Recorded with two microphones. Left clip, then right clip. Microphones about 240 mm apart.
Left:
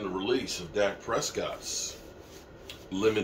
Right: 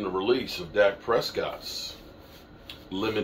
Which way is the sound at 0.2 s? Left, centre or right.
Centre.